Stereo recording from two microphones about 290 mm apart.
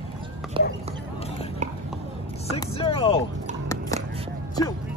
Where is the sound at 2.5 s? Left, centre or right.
Centre.